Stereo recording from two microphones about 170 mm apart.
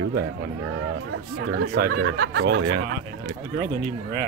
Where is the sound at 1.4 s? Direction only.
65° right (ahead or behind); by 2.6 s 90° right.